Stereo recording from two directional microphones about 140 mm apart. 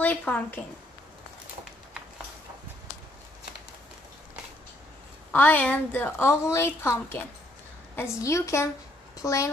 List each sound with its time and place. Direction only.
0.0 s a woman's voice: 10° left (ahead or behind)
5.3 s a woman's voice: 10° left (ahead or behind)